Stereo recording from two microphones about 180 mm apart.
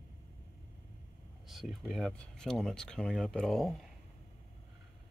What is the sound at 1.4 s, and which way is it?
Speech, centre (ahead or behind).